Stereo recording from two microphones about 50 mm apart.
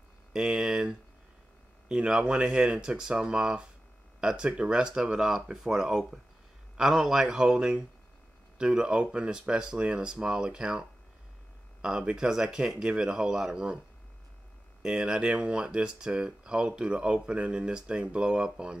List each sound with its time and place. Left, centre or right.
0.3 s speech: centre
15.0 s speech: right